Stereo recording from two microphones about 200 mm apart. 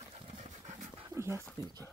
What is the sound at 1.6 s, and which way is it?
Speech, 20° right (ahead or behind).